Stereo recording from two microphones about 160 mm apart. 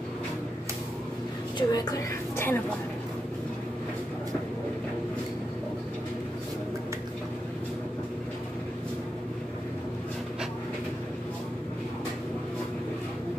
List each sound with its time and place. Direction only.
1.6 s a woman's voice: 25° left (ahead or behind)
2.3 s a woman's voice: 15° left (ahead or behind)